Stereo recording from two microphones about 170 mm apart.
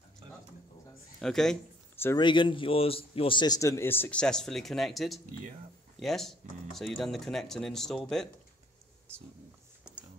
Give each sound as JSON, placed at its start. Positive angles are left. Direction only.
{"t": 1.2, "sound": "speech", "side_deg": 5}
{"t": 2.1, "sound": "a man's voice", "side_deg": 30}